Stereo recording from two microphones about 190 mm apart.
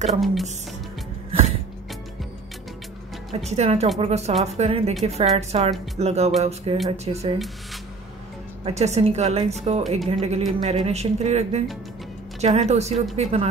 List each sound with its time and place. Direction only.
0.2 s speech: centre (ahead or behind)
3.3 s speech: 35° right (ahead or behind)
8.6 s speech: 35° right (ahead or behind)